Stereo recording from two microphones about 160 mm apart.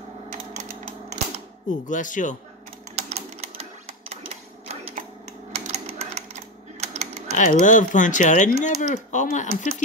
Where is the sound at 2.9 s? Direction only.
45° right (ahead or behind).